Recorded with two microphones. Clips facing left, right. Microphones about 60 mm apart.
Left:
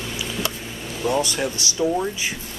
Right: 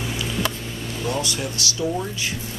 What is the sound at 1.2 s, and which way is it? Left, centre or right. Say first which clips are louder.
Speech: left 3 dB; left.